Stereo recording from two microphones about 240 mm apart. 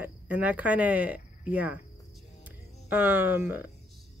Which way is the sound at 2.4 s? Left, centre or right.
Centre.